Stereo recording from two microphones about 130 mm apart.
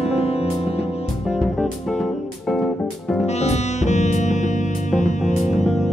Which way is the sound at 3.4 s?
60° left (ahead or behind).